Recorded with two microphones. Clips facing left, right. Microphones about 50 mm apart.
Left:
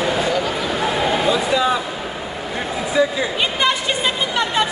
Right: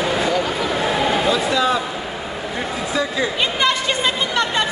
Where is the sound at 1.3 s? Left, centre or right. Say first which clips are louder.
Left 1 dB; centre.